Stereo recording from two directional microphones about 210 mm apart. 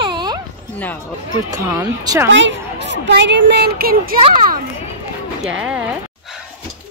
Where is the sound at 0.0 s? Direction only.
20° right (ahead or behind).